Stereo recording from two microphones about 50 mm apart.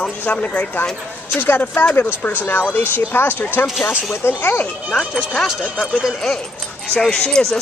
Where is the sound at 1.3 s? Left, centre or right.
Left.